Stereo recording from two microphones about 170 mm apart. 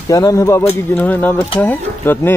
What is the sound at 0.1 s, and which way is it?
Speech, 20° left (ahead or behind).